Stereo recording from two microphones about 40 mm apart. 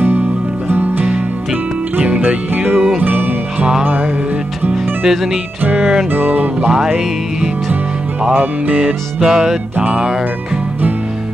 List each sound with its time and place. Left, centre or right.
0.0 s music: right
1.0 s music: right
2.5 s music: right
5.0 s speech: centre
6.1 s music: right
9.2 s music: centre